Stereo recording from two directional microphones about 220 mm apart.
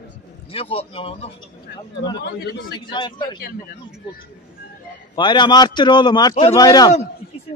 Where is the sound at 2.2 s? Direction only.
45° left (ahead or behind).